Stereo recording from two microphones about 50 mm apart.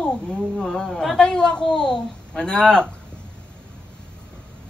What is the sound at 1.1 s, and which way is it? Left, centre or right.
A woman's voice, centre.